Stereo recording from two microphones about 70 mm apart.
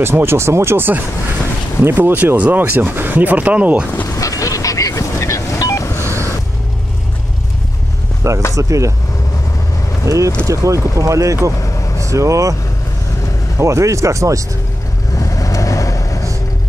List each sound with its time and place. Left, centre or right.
0.0 s speech: right; by 3.8 s centre
4.1 s a sound: left
5.9 s vehicle: right
8.2 s speech: right
10.0 s speech: right
13.6 s speech: right
15.1 s vehicle: left